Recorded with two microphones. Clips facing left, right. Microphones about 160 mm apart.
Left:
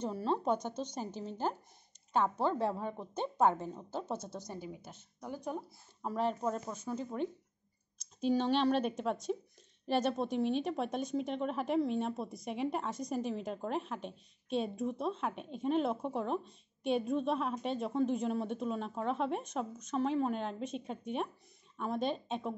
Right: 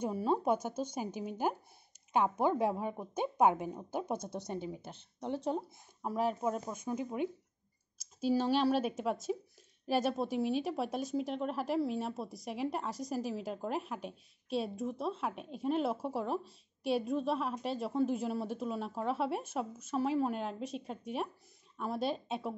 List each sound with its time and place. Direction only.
0.0 s a woman's voice: 10° right (ahead or behind)
4.5 s a woman's voice: 25° right (ahead or behind)
6.0 s a woman's voice: 10° right (ahead or behind)